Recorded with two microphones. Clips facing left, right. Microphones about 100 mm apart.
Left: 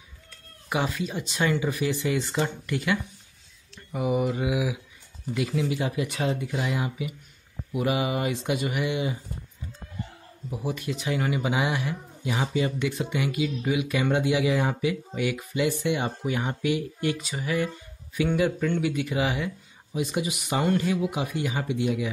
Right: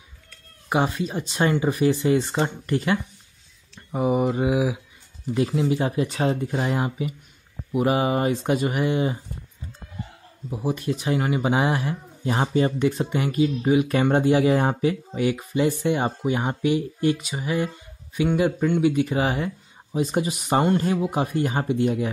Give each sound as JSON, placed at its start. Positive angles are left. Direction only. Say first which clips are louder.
{"t": 0.7, "sound": "speech", "louder": "right 5 dB", "side_deg": -30}
{"t": 10.5, "sound": "speech", "louder": "right 5 dB", "side_deg": -25}